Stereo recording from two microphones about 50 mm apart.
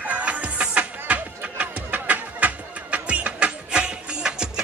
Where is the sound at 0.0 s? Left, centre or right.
Right.